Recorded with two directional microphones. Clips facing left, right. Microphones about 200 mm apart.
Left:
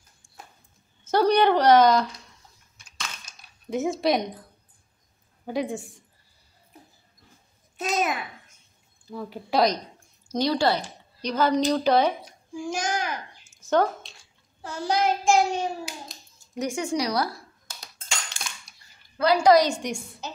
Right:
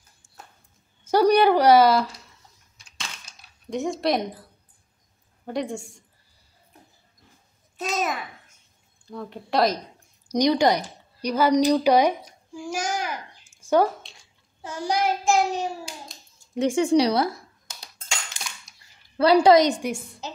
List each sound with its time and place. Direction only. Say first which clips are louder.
1.0 s a woman's voice: right 2 dB; 10° right (ahead or behind)
3.7 s speech: left 1 dB; 5° left (ahead or behind)
5.5 s speech: even; 5° left (ahead or behind)
7.7 s a child's voice: left 1 dB; centre (ahead or behind)
10.3 s a woman's voice: right 3 dB; 15° right (ahead or behind)
16.5 s speech: right 7 dB; 30° right (ahead or behind)
18.1 s dishes: even; 15° right (ahead or behind)
19.1 s a woman's voice: right 3 dB; 30° right (ahead or behind)